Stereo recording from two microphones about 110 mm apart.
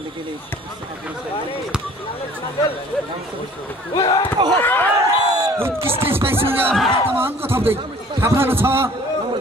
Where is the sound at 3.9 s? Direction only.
40° left (ahead or behind).